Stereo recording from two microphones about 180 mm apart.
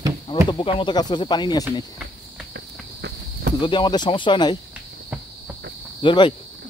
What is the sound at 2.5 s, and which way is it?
Cricket, 70° right (ahead or behind).